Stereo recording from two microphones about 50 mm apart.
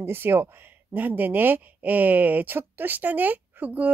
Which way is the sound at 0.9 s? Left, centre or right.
Right.